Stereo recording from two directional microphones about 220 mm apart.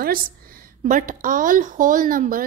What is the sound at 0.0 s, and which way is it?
A woman's voice, 40° right (ahead or behind).